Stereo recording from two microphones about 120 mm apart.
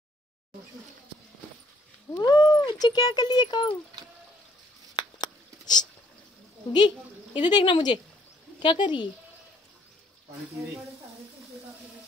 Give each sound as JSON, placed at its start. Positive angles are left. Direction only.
{"t": 2.1, "sound": "speech", "side_deg": 35}
{"t": 4.9, "sound": "a sound", "side_deg": 35}
{"t": 7.3, "sound": "speech", "side_deg": 40}